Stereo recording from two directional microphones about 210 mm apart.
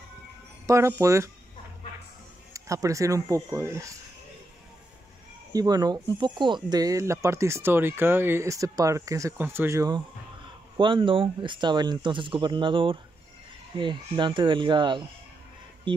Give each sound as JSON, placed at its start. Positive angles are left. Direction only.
{"t": 0.7, "sound": "speech", "side_deg": -15}
{"t": 2.5, "sound": "speech", "side_deg": -15}
{"t": 5.5, "sound": "speech", "side_deg": -20}